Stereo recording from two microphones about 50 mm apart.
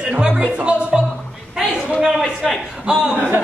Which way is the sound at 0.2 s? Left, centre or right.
Right.